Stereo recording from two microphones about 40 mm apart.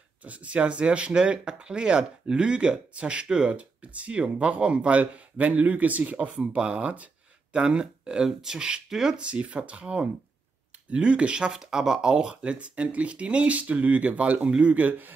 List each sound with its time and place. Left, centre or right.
0.2 s speech: right
6.4 s speech: right
8.3 s speech: centre
8.5 s speech: right
11.5 s speech: centre
13.6 s speech: right